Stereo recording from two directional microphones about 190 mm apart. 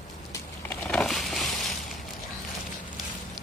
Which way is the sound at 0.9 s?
Centre (ahead or behind).